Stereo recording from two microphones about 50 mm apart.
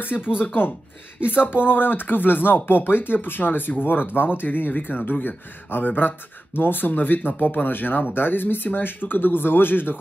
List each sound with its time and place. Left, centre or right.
0.0 s speech: left